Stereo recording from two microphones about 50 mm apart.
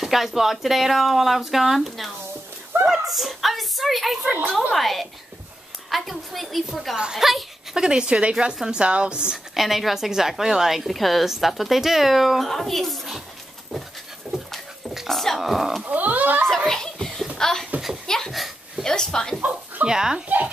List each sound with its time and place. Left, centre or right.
0.0 s a woman's voice: centre
2.9 s a woman's voice: centre
4.2 s speech: centre
4.7 s a woman's voice: centre
7.7 s a woman's voice: centre
9.5 s a woman's voice: centre
15.0 s a woman's voice: centre
15.8 s speech: right
16.4 s a sound: centre
18.9 s a woman's voice: centre
19.9 s speech: centre